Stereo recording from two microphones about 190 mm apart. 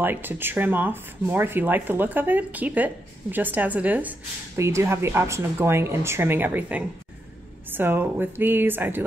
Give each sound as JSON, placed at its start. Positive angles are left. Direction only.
{"t": 0.0, "sound": "speech", "side_deg": -10}